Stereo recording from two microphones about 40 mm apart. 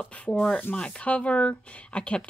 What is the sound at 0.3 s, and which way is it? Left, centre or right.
Speech, left.